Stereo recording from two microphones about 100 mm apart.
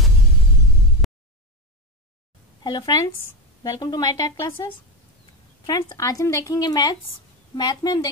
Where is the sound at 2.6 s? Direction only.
40° left (ahead or behind).